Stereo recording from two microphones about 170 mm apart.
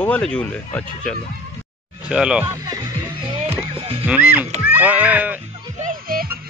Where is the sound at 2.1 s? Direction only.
5° right (ahead or behind).